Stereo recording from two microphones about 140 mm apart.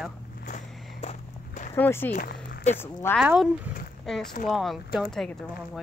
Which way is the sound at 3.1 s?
5° right (ahead or behind).